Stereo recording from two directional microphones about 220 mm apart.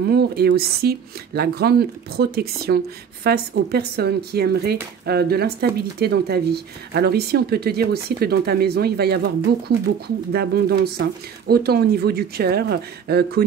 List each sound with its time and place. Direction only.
0.1 s speech: 45° right (ahead or behind)